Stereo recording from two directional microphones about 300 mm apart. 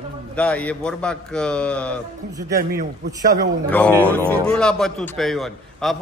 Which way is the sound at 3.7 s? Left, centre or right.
Centre.